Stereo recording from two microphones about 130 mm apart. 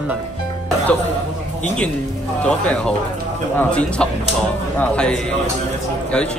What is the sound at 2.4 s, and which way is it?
Speech, 10° left (ahead or behind).